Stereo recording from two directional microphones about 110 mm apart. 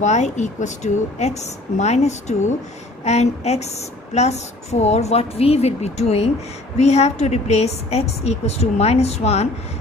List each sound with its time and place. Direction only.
0.0 s a woman's voice: 90° left; by 6.3 s 75° left (ahead or behind)
6.8 s a woman's voice: 85° left